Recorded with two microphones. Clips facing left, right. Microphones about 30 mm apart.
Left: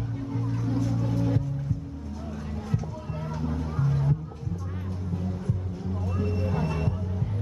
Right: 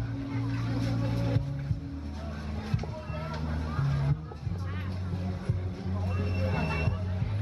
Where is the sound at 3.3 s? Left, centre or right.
Right.